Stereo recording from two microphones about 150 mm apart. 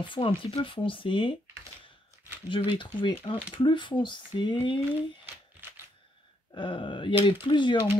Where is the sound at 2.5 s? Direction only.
35° left (ahead or behind).